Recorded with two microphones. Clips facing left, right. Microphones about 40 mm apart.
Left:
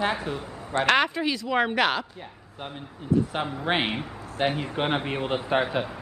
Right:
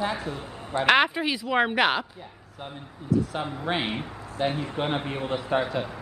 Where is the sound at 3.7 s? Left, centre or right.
Left.